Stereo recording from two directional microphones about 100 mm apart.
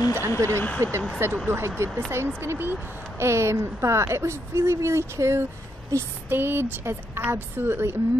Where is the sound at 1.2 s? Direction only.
25° right (ahead or behind).